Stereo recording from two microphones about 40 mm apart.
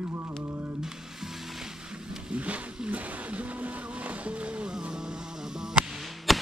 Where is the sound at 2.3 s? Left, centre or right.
Right.